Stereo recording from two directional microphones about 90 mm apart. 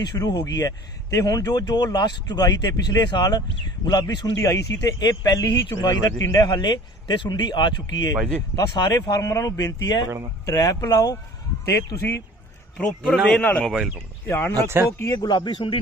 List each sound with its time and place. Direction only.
0.0 s speech: 45° left (ahead or behind); by 12.2 s 30° left (ahead or behind)
12.7 s a man's voice: 10° left (ahead or behind)
14.2 s speech: 25° left (ahead or behind)
15.1 s speech: 55° left (ahead or behind)